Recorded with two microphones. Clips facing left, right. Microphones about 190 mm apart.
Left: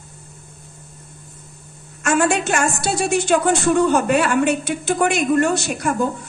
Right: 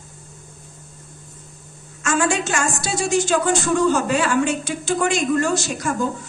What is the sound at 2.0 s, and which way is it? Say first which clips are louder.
A woman's voice: left 3 dB; 60° left (ahead or behind).